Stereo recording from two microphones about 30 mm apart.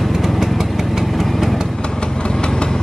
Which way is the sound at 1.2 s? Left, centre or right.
Centre.